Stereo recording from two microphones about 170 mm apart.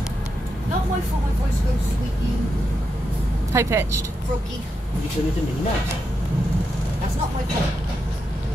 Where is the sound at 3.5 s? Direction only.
15° right (ahead or behind).